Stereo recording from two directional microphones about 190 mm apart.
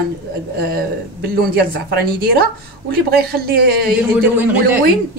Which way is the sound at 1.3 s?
55° right (ahead or behind).